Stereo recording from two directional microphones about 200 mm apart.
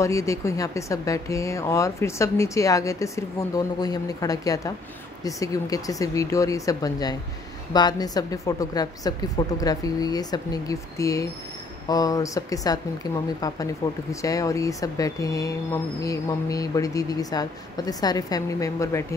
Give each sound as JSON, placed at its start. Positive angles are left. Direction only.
{"t": 0.0, "sound": "speech", "side_deg": 15}